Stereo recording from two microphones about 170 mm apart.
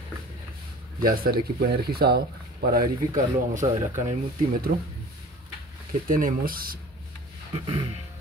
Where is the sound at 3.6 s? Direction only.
25° right (ahead or behind).